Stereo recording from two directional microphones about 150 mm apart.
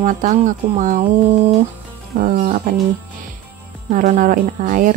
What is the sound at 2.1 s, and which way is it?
Speech, 65° right (ahead or behind).